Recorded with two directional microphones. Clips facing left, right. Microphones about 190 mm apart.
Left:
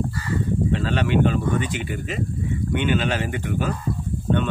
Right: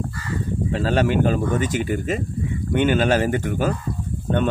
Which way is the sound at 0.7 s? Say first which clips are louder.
Right 7 dB; 40° right (ahead or behind).